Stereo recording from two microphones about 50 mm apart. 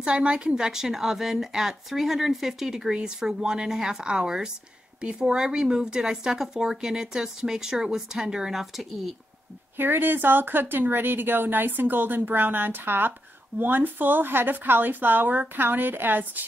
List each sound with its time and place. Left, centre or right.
0.0 s speech: centre
2.9 s speech: centre
9.8 s speech: right